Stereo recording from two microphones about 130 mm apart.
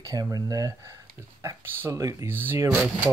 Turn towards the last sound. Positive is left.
turn(degrees=-10)  # may be behind; listen again after turning